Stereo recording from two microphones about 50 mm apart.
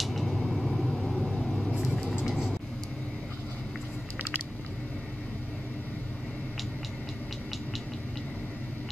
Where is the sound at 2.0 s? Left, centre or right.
Centre.